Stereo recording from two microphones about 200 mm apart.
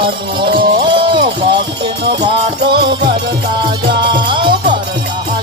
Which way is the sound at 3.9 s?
25° right (ahead or behind).